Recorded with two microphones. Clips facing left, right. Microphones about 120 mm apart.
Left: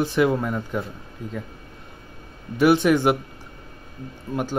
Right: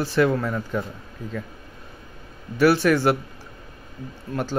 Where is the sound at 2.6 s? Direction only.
20° left (ahead or behind).